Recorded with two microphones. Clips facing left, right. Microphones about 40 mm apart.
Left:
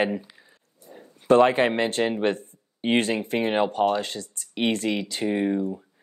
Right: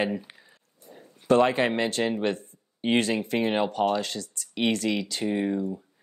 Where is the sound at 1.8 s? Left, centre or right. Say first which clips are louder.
Left 2 dB; left.